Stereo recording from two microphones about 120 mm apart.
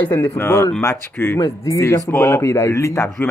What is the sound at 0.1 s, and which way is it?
Speech, 15° left (ahead or behind).